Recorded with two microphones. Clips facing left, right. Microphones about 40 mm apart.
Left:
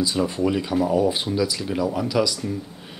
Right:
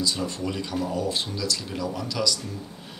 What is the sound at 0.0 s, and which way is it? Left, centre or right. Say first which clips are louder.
Speech: left 6 dB; centre.